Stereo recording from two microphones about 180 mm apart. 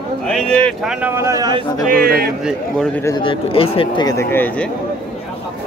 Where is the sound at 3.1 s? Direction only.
25° left (ahead or behind).